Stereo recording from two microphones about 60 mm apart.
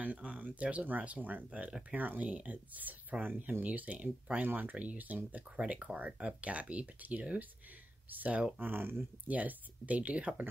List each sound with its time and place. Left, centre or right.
0.0 s speech: right
8.5 s speech: right
9.3 s speech: right